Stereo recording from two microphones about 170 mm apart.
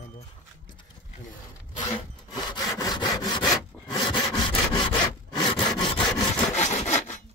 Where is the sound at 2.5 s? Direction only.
25° left (ahead or behind).